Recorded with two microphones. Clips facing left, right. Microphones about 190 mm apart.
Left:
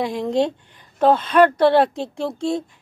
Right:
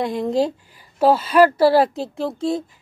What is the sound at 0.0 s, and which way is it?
Speech, centre (ahead or behind).